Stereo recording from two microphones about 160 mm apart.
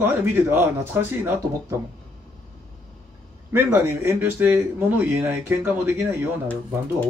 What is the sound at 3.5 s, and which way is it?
A man's voice, 15° right (ahead or behind).